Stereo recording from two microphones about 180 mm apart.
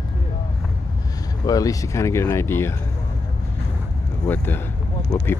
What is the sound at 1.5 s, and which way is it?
Speech, 20° left (ahead or behind).